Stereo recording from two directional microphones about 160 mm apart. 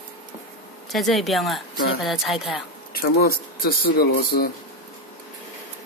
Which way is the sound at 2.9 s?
70° left (ahead or behind).